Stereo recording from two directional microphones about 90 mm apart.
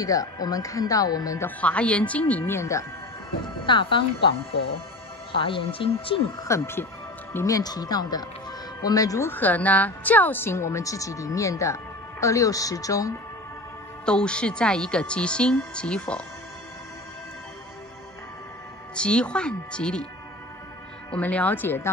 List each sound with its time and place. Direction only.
0.0 s speech: 40° left (ahead or behind)
1.6 s a woman's voice: 15° left (ahead or behind)
2.5 s speech: 35° left (ahead or behind)
3.6 s speech: 65° left (ahead or behind); by 6.2 s 85° left
6.4 s speech: 30° left (ahead or behind)
7.4 s speech: 45° left (ahead or behind)
9.3 s speech: 20° left (ahead or behind); by 13.1 s 40° left (ahead or behind)
14.0 s a woman's voice: 10° left (ahead or behind)
18.9 s a woman's voice: 10° left (ahead or behind)
21.1 s speech: 15° left (ahead or behind)